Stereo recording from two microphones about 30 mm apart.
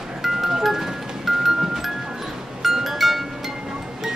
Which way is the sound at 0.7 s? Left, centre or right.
Centre.